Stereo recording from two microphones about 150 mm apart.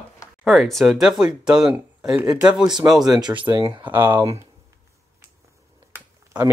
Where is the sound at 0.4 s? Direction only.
Centre (ahead or behind).